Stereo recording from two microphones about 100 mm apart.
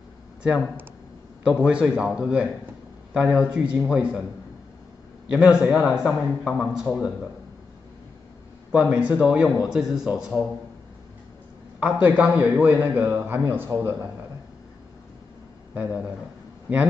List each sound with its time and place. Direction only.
0.4 s speech: 10° right (ahead or behind)
5.3 s speech: 10° right (ahead or behind)
8.7 s speech: 15° right (ahead or behind)
11.8 s speech: 15° right (ahead or behind)
13.7 s a man's voice: 30° right (ahead or behind)
15.7 s speech: 15° right (ahead or behind)